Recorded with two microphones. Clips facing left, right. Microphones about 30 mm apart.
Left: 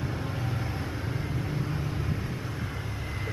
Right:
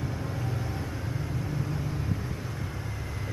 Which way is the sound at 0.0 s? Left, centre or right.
Left.